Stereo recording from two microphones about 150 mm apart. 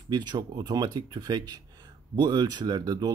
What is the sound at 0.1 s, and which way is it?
Speech, 25° right (ahead or behind).